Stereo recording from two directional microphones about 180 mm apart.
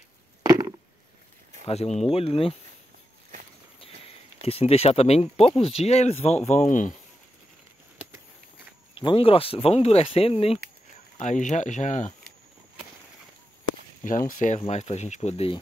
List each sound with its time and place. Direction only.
0.4 s a sound: 20° right (ahead or behind)
1.7 s speech: 35° left (ahead or behind)
4.4 s speech: 35° left (ahead or behind)
8.9 s speech: 30° left (ahead or behind)
11.1 s speech: 45° left (ahead or behind)
14.0 s speech: 45° left (ahead or behind)